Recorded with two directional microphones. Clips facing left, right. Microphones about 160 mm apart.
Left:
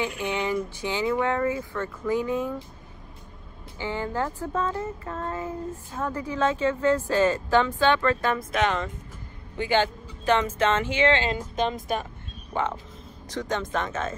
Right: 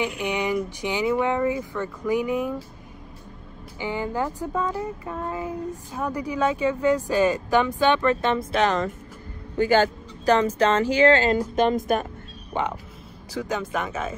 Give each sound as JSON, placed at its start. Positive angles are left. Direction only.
{"t": 0.0, "sound": "child singing", "side_deg": -15}
{"t": 3.8, "sound": "child singing", "side_deg": -15}
{"t": 9.6, "sound": "speech", "side_deg": -45}
{"t": 12.6, "sound": "speech", "side_deg": -20}
{"t": 13.3, "sound": "child singing", "side_deg": -10}